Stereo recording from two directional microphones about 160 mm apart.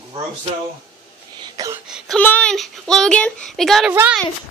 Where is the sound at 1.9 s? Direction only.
5° right (ahead or behind).